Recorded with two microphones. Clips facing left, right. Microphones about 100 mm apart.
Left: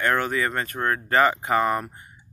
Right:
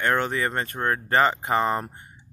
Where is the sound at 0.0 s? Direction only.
25° right (ahead or behind).